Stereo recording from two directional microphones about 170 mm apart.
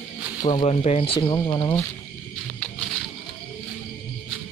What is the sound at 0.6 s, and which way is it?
Speech, 40° left (ahead or behind).